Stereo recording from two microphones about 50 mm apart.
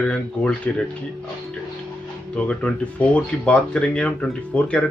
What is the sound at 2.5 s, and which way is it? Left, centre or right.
Speech, left.